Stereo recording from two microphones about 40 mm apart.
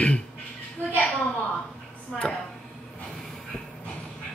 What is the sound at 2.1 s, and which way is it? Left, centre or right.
Speech, centre.